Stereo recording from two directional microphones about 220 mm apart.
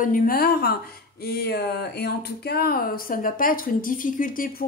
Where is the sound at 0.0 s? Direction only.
40° left (ahead or behind).